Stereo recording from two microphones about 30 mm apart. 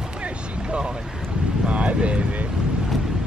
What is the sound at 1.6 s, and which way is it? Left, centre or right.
Vehicle, right.